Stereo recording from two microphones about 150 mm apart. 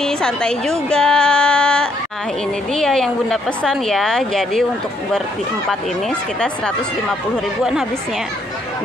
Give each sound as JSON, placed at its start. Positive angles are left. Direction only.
{"t": 0.0, "sound": "a woman's voice", "side_deg": 5}
{"t": 5.7, "sound": "a woman's voice", "side_deg": 5}